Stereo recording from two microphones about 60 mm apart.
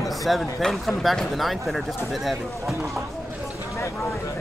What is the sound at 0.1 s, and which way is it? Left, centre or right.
Speech, centre.